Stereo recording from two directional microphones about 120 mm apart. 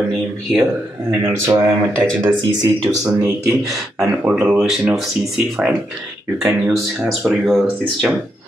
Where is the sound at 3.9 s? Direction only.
5° right (ahead or behind).